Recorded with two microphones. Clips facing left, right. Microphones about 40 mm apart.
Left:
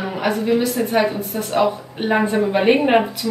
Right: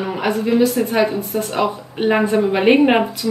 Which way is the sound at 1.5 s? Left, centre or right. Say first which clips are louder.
Left 5 dB; centre.